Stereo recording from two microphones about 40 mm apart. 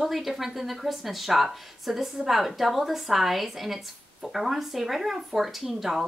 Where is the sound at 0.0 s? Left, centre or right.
Centre.